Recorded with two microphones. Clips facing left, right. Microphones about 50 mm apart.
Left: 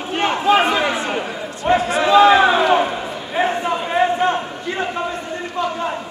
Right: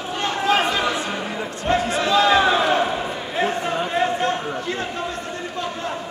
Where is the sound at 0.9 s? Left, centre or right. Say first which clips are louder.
Left 3 dB; left.